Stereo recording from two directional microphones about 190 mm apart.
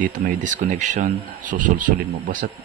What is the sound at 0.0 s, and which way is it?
Speech, 40° right (ahead or behind).